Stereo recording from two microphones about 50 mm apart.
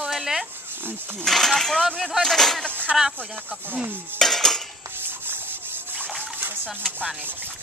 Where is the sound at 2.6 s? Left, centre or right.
Left.